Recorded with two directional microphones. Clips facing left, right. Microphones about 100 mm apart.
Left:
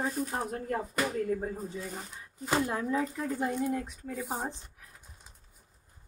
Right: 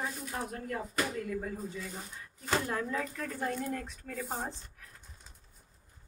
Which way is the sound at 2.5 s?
15° left (ahead or behind).